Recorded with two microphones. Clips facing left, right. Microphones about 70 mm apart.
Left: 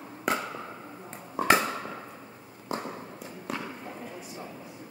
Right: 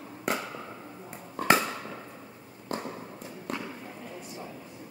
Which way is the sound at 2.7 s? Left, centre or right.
Centre.